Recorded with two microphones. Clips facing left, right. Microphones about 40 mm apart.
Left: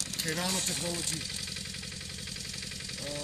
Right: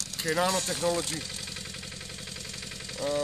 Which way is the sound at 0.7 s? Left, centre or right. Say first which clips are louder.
Right 7 dB; centre.